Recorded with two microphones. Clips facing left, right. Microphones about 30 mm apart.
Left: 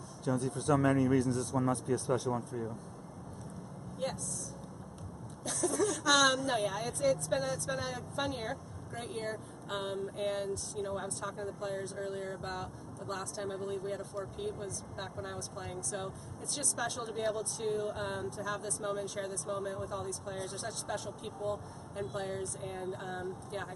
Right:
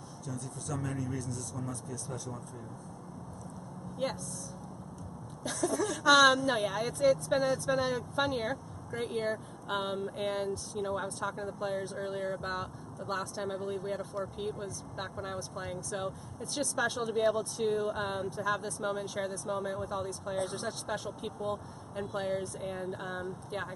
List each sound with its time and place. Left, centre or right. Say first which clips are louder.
0.2 s speech: left 9 dB; left
2.2 s speech: left 8 dB; centre
4.0 s speech: right 3 dB; centre
5.4 s speech: even; centre